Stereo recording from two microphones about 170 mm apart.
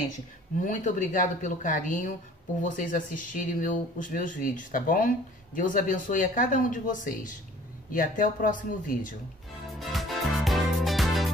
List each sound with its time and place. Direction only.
0.7 s speech: 50° left (ahead or behind)
9.8 s music: centre (ahead or behind)